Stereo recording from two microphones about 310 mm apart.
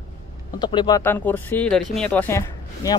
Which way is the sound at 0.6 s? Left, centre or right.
Centre.